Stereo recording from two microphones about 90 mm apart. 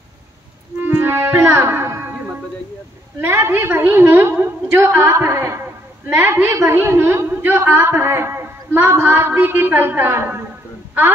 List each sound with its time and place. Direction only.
0.8 s music: 25° right (ahead or behind)
3.2 s a woman's voice: 25° right (ahead or behind)